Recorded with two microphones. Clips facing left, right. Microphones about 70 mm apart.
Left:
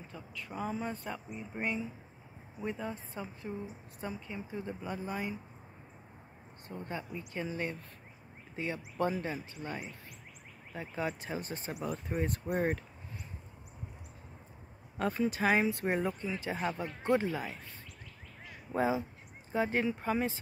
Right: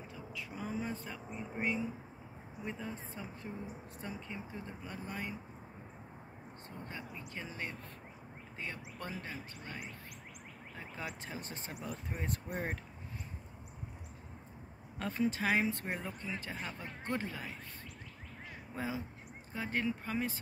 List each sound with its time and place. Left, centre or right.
0.1 s speech: centre
3.5 s speech: centre
4.0 s speech: centre
6.9 s speech: centre
8.5 s speech: centre
15.0 s speech: centre
16.5 s speech: left
18.8 s speech: left